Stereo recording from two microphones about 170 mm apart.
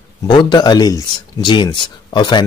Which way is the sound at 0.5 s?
25° left (ahead or behind).